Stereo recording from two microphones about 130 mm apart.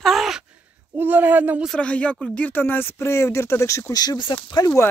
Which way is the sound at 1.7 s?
10° left (ahead or behind).